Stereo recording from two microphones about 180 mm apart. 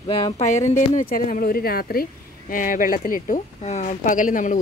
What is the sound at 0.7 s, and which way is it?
Speech, 50° left (ahead or behind).